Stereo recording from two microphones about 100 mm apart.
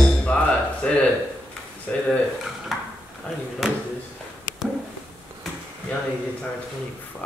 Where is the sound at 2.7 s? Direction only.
Centre (ahead or behind).